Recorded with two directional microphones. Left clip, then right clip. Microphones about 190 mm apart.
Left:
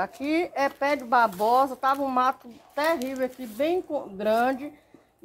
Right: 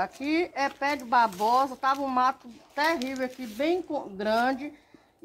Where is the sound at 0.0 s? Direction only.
45° left (ahead or behind).